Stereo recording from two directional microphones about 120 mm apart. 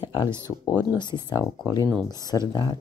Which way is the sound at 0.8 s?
35° left (ahead or behind).